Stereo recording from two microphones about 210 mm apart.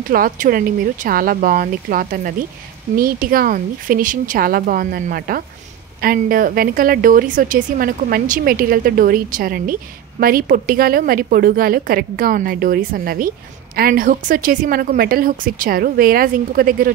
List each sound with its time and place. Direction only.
0.1 s a woman's voice: 45° right (ahead or behind)